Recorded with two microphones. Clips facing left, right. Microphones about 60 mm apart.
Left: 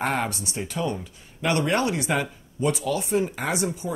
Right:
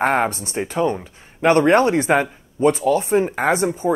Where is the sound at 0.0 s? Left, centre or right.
Right.